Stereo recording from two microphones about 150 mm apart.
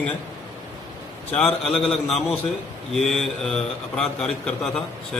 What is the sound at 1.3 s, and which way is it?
Speech, 5° left (ahead or behind).